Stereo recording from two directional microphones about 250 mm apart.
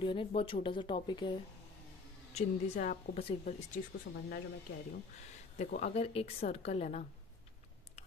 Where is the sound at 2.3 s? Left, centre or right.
Left.